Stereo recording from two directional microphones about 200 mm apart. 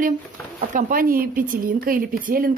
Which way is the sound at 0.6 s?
40° right (ahead or behind).